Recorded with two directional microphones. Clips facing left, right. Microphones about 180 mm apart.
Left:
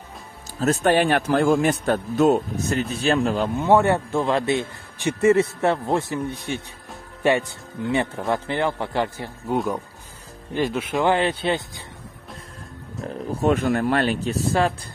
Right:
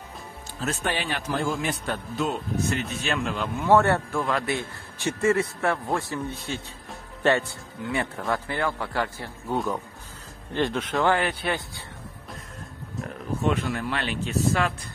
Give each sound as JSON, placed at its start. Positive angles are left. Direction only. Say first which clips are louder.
{"t": 0.6, "sound": "a man's voice", "louder": "left 10 dB", "side_deg": 45}
{"t": 3.5, "sound": "speech", "louder": "left 1 dB", "side_deg": 20}
{"t": 11.0, "sound": "speech", "louder": "left 3 dB", "side_deg": 20}
{"t": 13.0, "sound": "a man's voice", "louder": "left 4 dB", "side_deg": 40}